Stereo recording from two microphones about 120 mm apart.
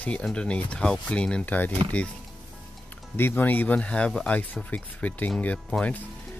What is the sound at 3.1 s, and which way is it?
Speech, 15° left (ahead or behind).